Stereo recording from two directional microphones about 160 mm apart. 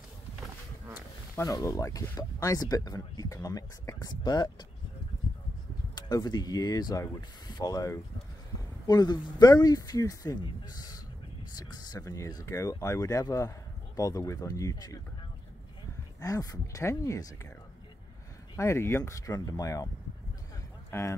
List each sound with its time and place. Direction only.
1.3 s speech: 20° left (ahead or behind)
5.9 s speech: 25° left (ahead or behind)
16.2 s speech: 20° left (ahead or behind)
18.6 s speech: 20° left (ahead or behind)
20.9 s speech: 15° left (ahead or behind)